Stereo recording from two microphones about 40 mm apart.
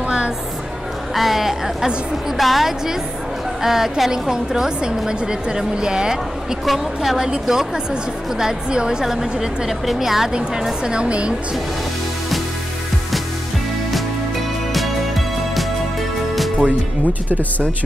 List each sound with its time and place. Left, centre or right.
1.1 s a woman's voice: centre
6.6 s speech: centre
7.2 s a woman's voice: centre
10.8 s speech: right